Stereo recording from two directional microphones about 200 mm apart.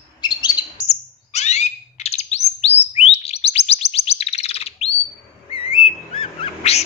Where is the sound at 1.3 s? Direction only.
35° left (ahead or behind).